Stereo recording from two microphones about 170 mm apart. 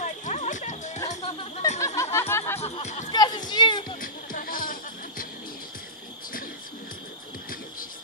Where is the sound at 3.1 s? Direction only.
25° left (ahead or behind).